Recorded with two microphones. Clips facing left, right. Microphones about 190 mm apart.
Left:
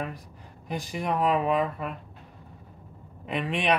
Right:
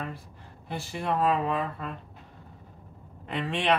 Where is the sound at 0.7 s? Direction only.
15° left (ahead or behind).